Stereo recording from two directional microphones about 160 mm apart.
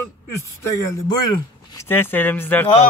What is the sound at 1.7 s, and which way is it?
Speech, 10° left (ahead or behind).